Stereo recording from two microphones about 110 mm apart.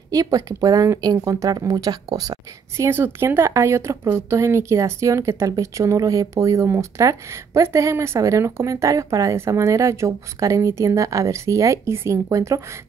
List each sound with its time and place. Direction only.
0.1 s speech: 35° right (ahead or behind)
2.8 s speech: 20° right (ahead or behind)